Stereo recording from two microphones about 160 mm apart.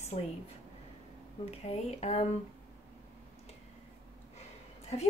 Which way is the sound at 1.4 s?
40° left (ahead or behind).